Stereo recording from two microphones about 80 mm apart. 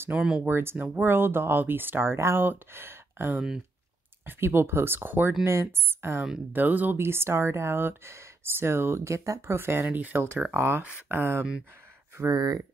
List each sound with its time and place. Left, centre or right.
0.1 s speech: centre
0.5 s speech: right
10.8 s speech: centre
11.1 s speech: right
12.2 s speech: right